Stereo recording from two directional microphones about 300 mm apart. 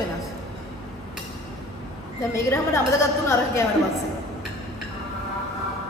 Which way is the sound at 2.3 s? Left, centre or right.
Centre.